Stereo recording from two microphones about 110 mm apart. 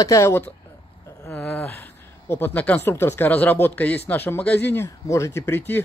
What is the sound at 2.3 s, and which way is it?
Speech, 15° left (ahead or behind).